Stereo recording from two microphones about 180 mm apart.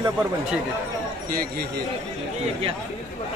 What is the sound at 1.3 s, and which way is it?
Speech, 55° right (ahead or behind).